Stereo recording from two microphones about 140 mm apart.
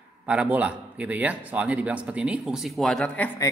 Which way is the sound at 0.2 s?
10° right (ahead or behind).